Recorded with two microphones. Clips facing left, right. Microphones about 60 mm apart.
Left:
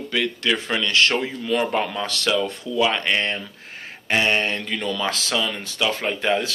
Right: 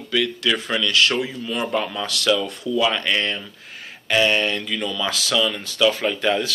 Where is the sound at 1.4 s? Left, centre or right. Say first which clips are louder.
Left 4 dB; left.